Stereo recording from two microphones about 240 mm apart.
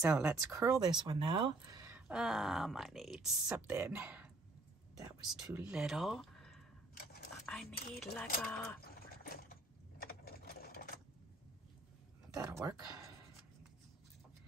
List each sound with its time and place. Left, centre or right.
0.0 s speech: centre
7.0 s a sound: left
7.5 s speech: centre
8.8 s duck: left
10.0 s sewing machine: left
12.4 s speech: centre